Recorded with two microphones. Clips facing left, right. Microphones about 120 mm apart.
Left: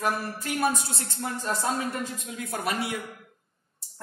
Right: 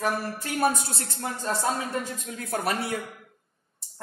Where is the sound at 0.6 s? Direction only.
30° right (ahead or behind).